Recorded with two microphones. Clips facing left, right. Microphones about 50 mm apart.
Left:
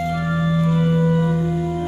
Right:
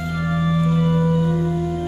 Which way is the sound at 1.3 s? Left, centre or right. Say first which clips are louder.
Even; centre.